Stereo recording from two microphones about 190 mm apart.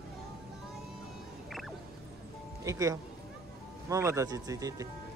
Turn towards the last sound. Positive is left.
turn(degrees=-15)  # may be behind; listen again after turning